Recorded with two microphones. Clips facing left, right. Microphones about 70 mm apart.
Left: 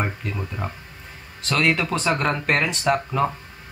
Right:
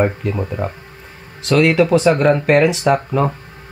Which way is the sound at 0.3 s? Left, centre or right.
Centre.